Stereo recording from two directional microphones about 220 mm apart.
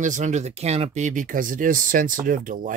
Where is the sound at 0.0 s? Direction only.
35° right (ahead or behind).